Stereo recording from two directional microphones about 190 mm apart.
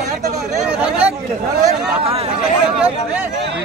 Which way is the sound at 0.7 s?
5° right (ahead or behind).